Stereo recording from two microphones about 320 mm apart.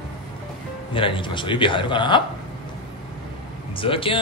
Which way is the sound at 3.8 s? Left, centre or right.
Centre.